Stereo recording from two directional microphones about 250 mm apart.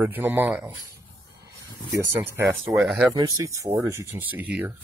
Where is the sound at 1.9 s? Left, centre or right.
Centre.